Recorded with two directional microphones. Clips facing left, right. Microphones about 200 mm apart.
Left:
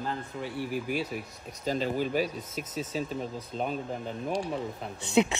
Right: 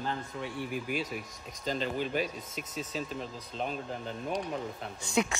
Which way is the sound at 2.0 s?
5° left (ahead or behind).